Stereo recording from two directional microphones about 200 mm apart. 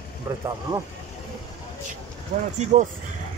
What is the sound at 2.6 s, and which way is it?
Speech, 35° right (ahead or behind).